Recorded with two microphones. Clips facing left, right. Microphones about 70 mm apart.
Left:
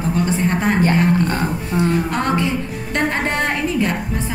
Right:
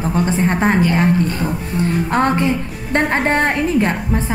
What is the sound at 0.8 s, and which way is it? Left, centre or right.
Speech, left.